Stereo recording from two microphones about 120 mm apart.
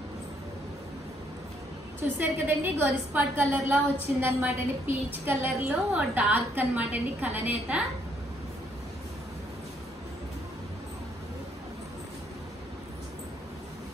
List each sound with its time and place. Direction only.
2.0 s a woman's voice: 20° right (ahead or behind)